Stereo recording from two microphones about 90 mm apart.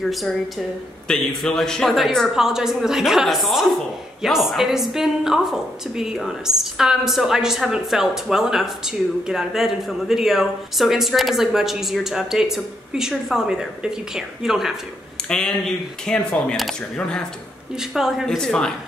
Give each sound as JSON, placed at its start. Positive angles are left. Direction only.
{"t": 0.0, "sound": "a woman's voice", "side_deg": 0}
{"t": 15.2, "sound": "speech", "side_deg": 10}
{"t": 17.7, "sound": "a woman's voice", "side_deg": -5}